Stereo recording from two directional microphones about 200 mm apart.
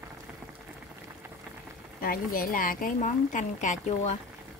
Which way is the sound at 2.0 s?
45° left (ahead or behind).